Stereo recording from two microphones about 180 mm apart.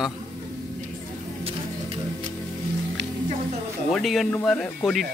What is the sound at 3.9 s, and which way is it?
Speech, centre (ahead or behind).